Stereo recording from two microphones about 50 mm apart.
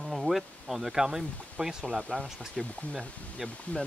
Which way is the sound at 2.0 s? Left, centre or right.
Left.